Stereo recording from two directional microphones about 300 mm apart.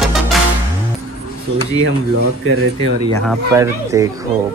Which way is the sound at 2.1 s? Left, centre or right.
Right.